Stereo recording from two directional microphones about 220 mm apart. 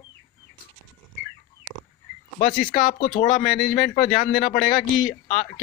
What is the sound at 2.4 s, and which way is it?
Speech, 40° left (ahead or behind).